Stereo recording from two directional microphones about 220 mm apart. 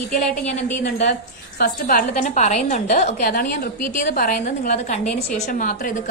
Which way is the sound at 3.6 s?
40° left (ahead or behind).